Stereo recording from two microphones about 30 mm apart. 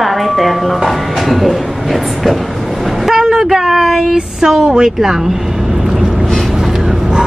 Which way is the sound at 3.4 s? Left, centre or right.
Centre.